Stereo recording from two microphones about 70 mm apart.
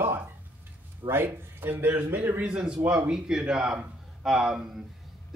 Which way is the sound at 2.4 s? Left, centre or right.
Centre.